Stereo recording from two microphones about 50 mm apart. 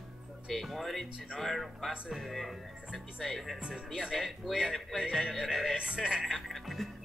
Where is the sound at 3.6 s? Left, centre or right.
Right.